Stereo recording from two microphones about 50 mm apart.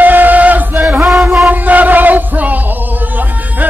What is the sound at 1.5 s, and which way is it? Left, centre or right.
Music, right.